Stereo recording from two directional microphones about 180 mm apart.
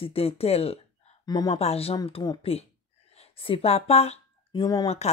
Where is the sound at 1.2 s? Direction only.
20° left (ahead or behind).